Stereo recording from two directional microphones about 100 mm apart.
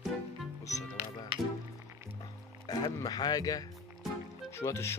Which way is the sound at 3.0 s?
40° left (ahead or behind).